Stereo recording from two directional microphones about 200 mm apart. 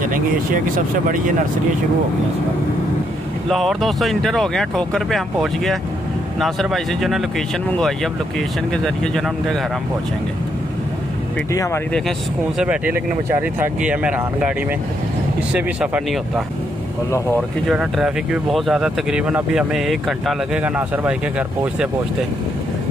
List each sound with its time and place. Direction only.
0.7 s speech: 45° right (ahead or behind)
3.4 s speech: centre (ahead or behind)
11.5 s speech: 15° left (ahead or behind)
12.5 s speech: 5° right (ahead or behind)
15.5 s speech: 5° right (ahead or behind)